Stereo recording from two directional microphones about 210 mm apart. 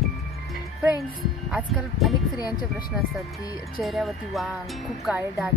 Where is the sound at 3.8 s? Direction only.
Centre (ahead or behind).